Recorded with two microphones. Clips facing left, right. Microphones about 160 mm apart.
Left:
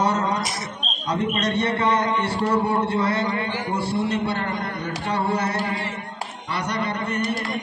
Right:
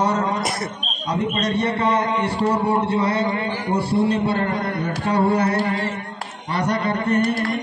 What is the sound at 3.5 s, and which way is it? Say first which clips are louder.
A man's voice: right 4 dB; 40° right (ahead or behind).